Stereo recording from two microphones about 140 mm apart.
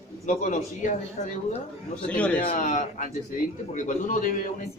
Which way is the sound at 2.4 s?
80° left.